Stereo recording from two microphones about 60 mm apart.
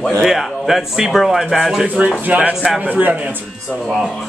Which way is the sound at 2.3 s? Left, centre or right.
Right.